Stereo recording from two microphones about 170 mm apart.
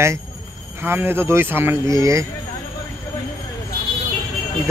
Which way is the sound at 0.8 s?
15° right (ahead or behind).